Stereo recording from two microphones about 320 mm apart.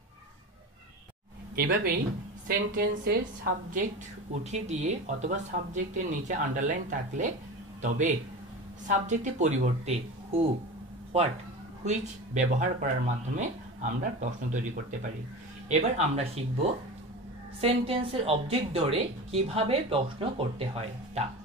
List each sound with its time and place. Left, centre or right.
1.5 s a woman's voice: right
17.6 s a woman's voice: centre